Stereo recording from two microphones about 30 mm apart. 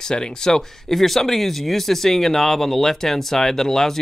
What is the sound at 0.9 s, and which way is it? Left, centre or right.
Speech, centre.